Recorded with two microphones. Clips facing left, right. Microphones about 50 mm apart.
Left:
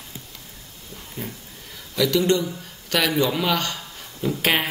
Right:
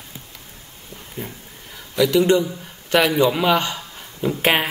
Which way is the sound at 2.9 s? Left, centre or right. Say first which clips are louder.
Right 5 dB; right.